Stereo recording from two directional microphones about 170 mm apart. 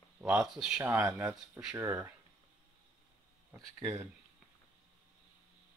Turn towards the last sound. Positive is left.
turn(degrees=-15)  # may be behind; listen again after turning